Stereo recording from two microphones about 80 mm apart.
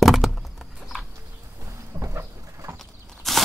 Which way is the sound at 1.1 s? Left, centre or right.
Right.